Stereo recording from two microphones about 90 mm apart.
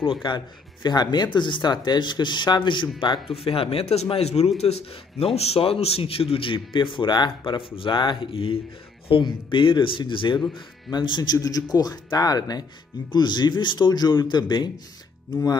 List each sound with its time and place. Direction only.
0.2 s speech: 65° left (ahead or behind)
3.0 s a man's voice: 75° left (ahead or behind)
3.4 s a man's voice: 90° left
9.2 s a man's voice: 70° left (ahead or behind)